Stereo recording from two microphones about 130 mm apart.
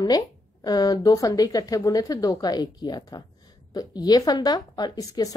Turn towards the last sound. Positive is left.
turn(degrees=30)  # may be behind; listen again after turning